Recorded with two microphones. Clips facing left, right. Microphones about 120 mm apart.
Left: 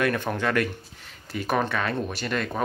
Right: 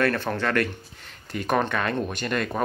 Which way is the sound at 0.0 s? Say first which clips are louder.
Right 1 dB; 15° left (ahead or behind).